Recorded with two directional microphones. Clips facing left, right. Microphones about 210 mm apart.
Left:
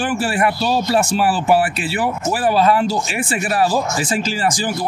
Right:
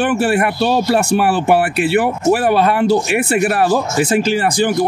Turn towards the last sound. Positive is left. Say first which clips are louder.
# right 5 dB
turn(degrees=-60)  # may be behind; listen again after turning